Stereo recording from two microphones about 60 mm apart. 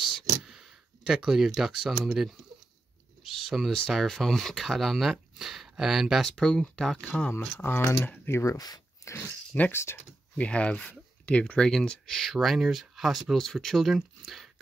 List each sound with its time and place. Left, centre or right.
0.5 s speech: centre
6.2 s speech: centre
7.1 s speech: left
7.6 s speech: left
8.5 s a sound: left
9.7 s speech: left
10.3 s speech: left
12.2 s speech: centre